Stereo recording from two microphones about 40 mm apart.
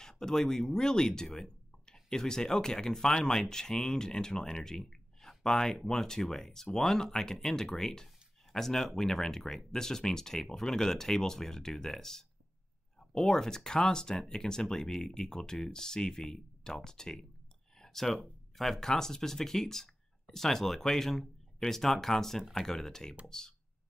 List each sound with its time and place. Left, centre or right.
0.0 s speech: centre
17.7 s a sound: centre
18.6 s speech: centre